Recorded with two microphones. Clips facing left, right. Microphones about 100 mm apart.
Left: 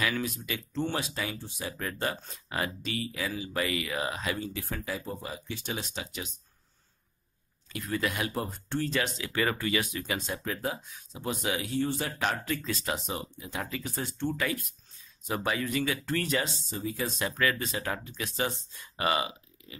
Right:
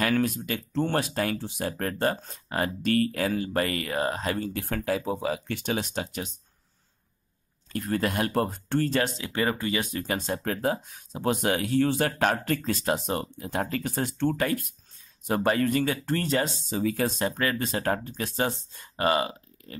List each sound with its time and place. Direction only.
0.0 s speech: 50° right (ahead or behind)
4.6 s speech: 60° right (ahead or behind)
7.7 s speech: 45° right (ahead or behind)
8.3 s speech: 60° right (ahead or behind)
9.2 s speech: 30° right (ahead or behind)
9.9 s speech: 40° right (ahead or behind)
10.4 s speech: 50° right (ahead or behind); by 12.1 s 70° right (ahead or behind)
12.2 s speech: 50° right (ahead or behind)
15.2 s speech: 50° right (ahead or behind)
15.9 s speech: 35° right (ahead or behind)
16.7 s speech: 70° right (ahead or behind)
17.2 s speech: 35° right (ahead or behind)